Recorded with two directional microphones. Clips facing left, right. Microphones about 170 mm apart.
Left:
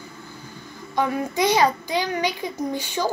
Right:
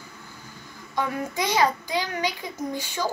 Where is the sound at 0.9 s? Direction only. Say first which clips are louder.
Left 4 dB; 20° left (ahead or behind).